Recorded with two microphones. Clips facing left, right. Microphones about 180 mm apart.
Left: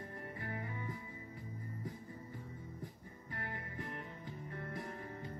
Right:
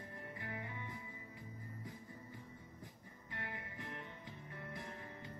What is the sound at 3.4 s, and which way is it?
Music, 40° left (ahead or behind).